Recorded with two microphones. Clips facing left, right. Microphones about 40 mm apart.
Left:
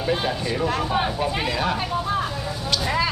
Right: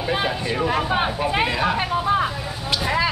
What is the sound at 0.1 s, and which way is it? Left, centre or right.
Speech, right.